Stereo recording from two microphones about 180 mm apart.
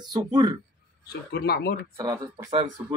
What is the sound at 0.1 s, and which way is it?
Speech, 20° right (ahead or behind).